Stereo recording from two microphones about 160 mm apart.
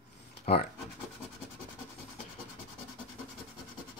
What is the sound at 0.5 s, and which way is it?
Speech, 40° left (ahead or behind).